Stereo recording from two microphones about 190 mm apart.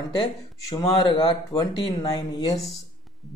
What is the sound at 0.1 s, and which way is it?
Speech, 20° left (ahead or behind).